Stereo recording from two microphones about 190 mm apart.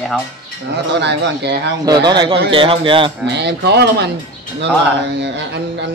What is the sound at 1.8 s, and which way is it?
A man's voice, 20° right (ahead or behind).